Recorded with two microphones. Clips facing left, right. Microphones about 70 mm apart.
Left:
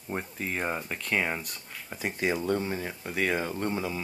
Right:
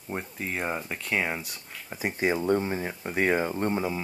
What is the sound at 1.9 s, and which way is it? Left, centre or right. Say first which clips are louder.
Speech: right 2 dB; centre.